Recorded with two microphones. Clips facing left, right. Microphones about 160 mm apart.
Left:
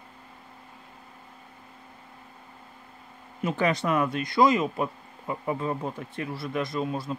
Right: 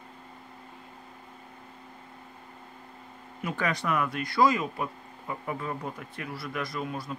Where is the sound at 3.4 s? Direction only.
25° left (ahead or behind).